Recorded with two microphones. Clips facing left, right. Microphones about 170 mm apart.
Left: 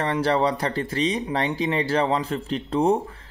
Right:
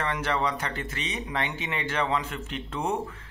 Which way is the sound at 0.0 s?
35° left (ahead or behind).